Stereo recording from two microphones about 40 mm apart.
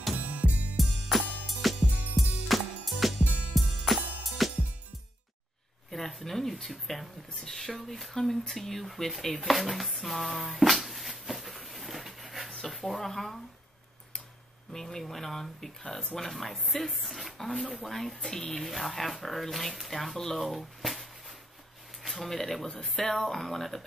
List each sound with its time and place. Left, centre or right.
0.2 s music: right
0.7 s music: centre
5.9 s speech: centre
12.4 s a sound: centre
14.7 s speech: centre